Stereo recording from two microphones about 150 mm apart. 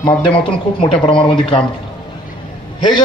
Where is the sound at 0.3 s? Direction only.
35° left (ahead or behind).